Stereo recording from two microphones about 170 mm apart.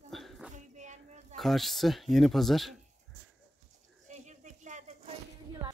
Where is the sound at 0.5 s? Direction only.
45° right (ahead or behind).